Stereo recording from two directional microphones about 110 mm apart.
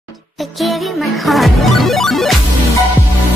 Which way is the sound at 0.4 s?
Centre (ahead or behind).